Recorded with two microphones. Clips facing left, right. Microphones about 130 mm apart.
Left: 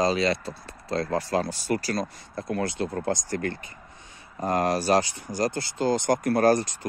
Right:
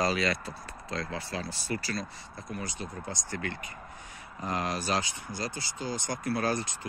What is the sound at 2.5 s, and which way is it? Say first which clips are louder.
Speech: left 10 dB; 75° left (ahead or behind).